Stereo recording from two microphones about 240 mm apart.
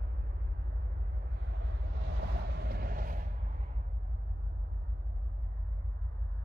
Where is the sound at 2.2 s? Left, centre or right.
Right.